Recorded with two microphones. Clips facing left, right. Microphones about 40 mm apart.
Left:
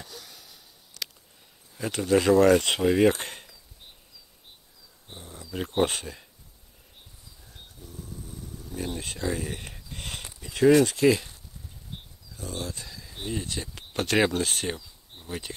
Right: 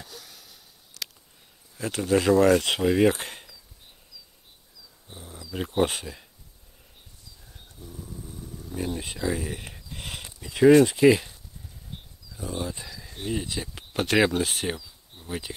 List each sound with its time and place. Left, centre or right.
0.0 s a sound: centre
1.8 s speech: centre
5.5 s speech: centre
7.8 s a sound: centre
8.3 s speech: centre
12.4 s speech: centre